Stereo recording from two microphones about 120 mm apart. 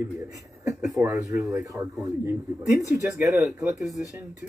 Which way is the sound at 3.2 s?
25° right (ahead or behind).